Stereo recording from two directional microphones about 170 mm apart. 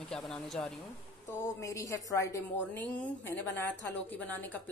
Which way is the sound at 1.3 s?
15° left (ahead or behind).